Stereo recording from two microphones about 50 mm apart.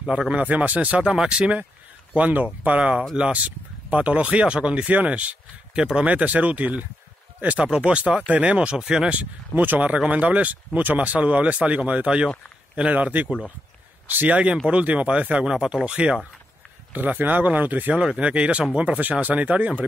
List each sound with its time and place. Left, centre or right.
0.3 s speech: right
1.0 s speech: centre; by 2.8 s right
2.8 s speech: centre
9.1 s speech: right
15.5 s speech: centre
15.8 s speech: right
16.9 s speech: right
17.9 s speech: right